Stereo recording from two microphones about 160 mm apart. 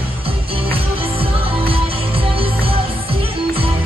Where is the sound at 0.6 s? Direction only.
35° right (ahead or behind).